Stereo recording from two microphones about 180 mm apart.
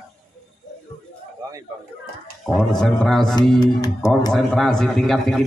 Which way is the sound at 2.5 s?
Centre (ahead or behind).